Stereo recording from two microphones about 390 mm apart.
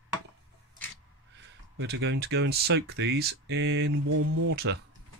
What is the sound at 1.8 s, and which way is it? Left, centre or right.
Speech, right.